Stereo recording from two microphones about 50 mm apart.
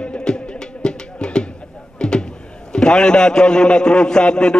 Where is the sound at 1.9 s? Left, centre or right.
Centre.